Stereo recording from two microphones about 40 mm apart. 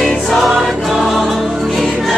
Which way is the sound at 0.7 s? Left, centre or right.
Centre.